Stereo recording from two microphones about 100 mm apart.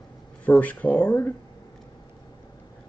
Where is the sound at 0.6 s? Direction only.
15° left (ahead or behind).